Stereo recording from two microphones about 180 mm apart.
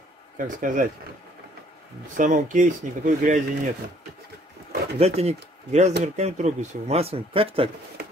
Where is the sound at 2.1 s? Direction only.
45° right (ahead or behind).